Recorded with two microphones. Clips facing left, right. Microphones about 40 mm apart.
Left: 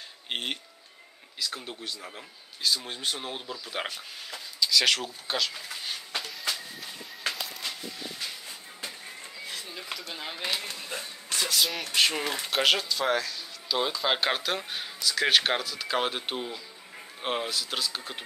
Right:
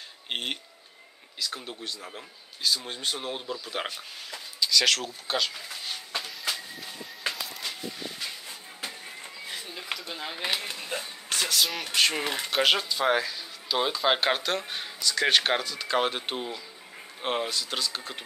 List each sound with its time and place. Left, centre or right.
0.3 s speech: centre
6.4 s a sound: centre
10.1 s speech: centre
10.4 s speech: centre
11.4 s speech: centre